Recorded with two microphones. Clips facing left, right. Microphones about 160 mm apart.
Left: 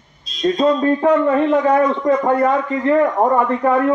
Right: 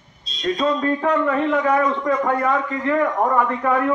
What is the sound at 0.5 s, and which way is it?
A man's voice, 30° left (ahead or behind).